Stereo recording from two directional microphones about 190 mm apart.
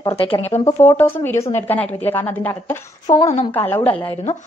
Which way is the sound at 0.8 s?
10° left (ahead or behind).